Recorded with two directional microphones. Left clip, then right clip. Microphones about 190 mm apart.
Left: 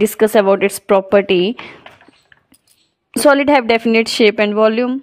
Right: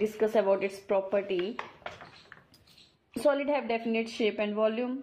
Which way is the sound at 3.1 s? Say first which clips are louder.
Left 16 dB; 70° left (ahead or behind).